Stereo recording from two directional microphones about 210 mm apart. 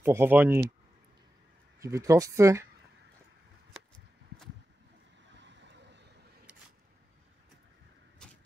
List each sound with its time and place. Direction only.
0.0 s speech: 10° right (ahead or behind)
1.8 s speech: 15° right (ahead or behind)
5.3 s vehicle: 55° right (ahead or behind)
8.2 s a sound: 5° left (ahead or behind)